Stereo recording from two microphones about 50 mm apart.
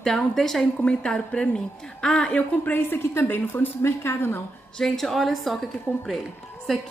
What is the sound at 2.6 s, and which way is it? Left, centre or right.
A woman's voice, left.